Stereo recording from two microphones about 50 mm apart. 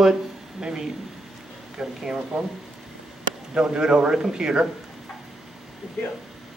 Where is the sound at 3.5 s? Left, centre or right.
Centre.